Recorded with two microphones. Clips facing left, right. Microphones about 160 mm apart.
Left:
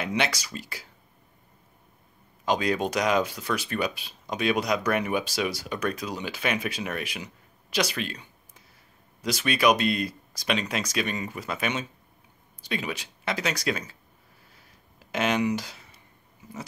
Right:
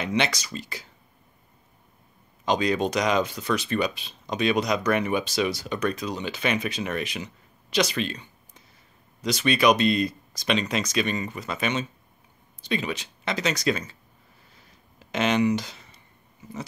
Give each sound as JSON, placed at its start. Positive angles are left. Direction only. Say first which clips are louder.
{"t": 0.0, "sound": "speech", "louder": "right 2 dB", "side_deg": 10}
{"t": 2.4, "sound": "speech", "louder": "right 2 dB", "side_deg": 5}
{"t": 7.7, "sound": "a sound", "louder": "right 3 dB", "side_deg": 5}
{"t": 9.2, "sound": "speech", "louder": "right 2 dB", "side_deg": 5}
{"t": 15.0, "sound": "speech", "louder": "right 3 dB", "side_deg": 5}